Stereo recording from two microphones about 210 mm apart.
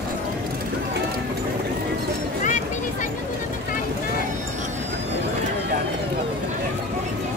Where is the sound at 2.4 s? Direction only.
35° left (ahead or behind).